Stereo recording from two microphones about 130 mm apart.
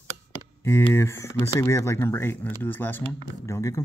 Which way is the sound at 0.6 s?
15° left (ahead or behind).